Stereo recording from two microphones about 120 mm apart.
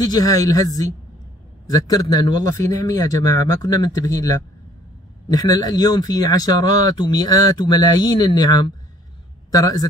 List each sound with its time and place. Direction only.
0.0 s speech: 30° left (ahead or behind)
5.3 s speech: 35° left (ahead or behind)